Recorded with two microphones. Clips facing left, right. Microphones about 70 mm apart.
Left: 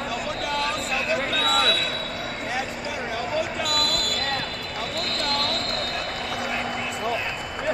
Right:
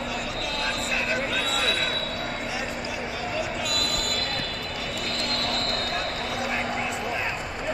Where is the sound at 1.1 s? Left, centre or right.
Left.